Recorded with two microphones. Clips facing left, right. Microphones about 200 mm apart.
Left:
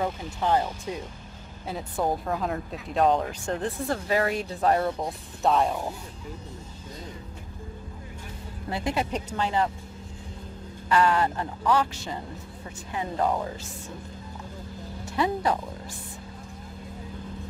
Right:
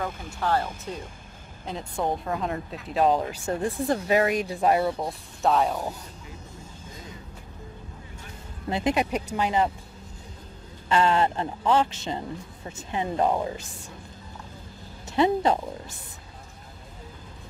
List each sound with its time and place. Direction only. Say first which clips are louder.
0.0 s speech: left 2 dB; 20° left (ahead or behind); by 5.8 s centre (ahead or behind)
8.6 s speech: right 4 dB; 20° right (ahead or behind)
10.9 s speech: right 1 dB; 25° right (ahead or behind)
15.0 s speech: right 4 dB; 25° right (ahead or behind)